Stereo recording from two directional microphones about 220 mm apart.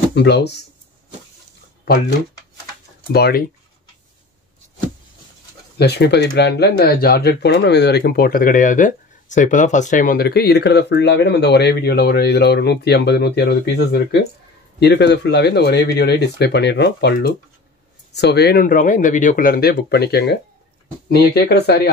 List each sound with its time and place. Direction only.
0.1 s speech: 50° left (ahead or behind)
3.1 s speech: 45° left (ahead or behind)
5.8 s speech: 50° left (ahead or behind)